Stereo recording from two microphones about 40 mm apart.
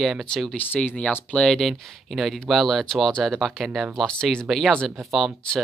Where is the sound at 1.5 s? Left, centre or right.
Centre.